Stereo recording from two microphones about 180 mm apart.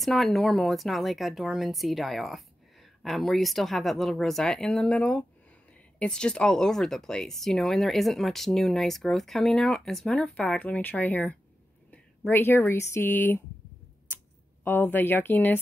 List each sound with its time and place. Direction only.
0.0 s speech: centre (ahead or behind)